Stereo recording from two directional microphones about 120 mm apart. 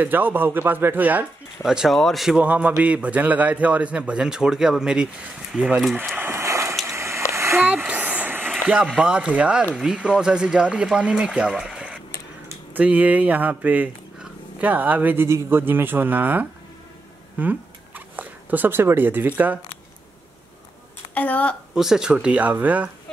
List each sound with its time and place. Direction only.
0.0 s a man's voice: 15° right (ahead or behind)
1.6 s a man's voice: 5° right (ahead or behind)
6.1 s a sound: 20° right (ahead or behind)
7.6 s a sound: 10° right (ahead or behind)
8.9 s a man's voice: 10° right (ahead or behind)
21.1 s a woman's voice: 10° left (ahead or behind)
21.7 s a man's voice: 5° right (ahead or behind)